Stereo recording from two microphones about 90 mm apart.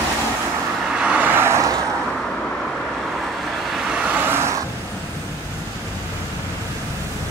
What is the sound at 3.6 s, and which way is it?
Vehicle, 5° right (ahead or behind).